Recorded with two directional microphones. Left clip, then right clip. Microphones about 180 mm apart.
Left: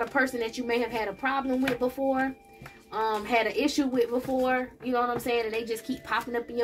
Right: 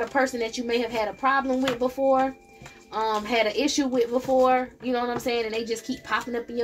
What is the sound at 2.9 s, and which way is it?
A woman's voice, 35° right (ahead or behind).